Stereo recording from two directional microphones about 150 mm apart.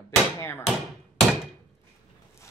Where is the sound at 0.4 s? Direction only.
15° left (ahead or behind).